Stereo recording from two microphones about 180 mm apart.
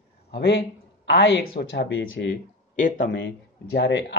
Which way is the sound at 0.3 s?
65° left (ahead or behind).